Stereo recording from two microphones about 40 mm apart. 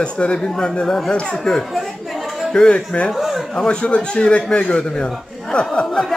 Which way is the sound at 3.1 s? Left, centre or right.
Centre.